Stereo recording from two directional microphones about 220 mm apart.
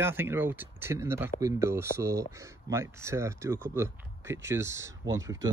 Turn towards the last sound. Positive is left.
turn(degrees=-15)  # may be behind; listen again after turning